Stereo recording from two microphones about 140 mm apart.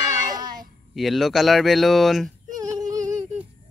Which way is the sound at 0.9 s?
Centre (ahead or behind).